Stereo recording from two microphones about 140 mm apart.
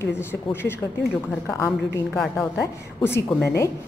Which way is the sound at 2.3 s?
20° left (ahead or behind).